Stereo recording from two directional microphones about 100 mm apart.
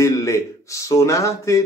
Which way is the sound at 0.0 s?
30° left (ahead or behind).